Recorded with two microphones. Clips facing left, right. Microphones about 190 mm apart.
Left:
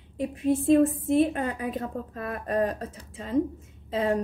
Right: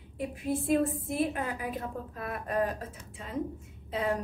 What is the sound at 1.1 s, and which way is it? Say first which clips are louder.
A woman's voice: left 8 dB; 25° left (ahead or behind).